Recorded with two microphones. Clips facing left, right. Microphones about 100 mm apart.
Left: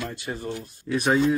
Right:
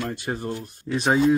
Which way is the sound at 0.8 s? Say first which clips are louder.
Right 1 dB; 25° right (ahead or behind).